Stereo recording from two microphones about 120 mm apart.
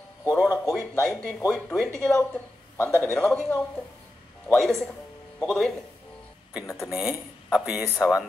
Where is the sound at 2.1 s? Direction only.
20° left (ahead or behind); by 5.8 s 5° left (ahead or behind).